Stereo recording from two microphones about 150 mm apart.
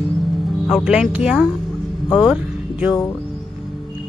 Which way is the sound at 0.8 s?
5° right (ahead or behind).